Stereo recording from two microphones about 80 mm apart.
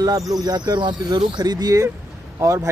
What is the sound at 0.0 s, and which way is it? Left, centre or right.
Speech, right.